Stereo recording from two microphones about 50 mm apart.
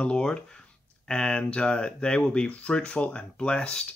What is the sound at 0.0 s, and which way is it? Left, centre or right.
Speech, centre.